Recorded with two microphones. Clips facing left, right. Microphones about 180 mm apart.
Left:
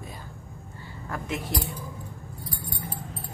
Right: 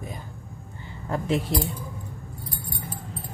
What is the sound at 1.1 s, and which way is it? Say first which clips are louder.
Speech: right 7 dB; 30° right (ahead or behind).